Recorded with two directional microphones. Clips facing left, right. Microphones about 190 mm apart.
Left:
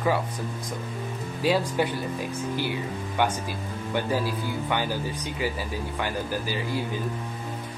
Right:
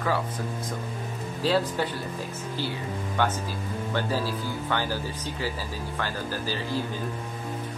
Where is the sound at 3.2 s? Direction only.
15° left (ahead or behind).